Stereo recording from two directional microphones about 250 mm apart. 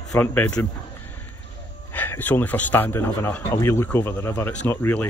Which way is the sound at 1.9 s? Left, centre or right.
Centre.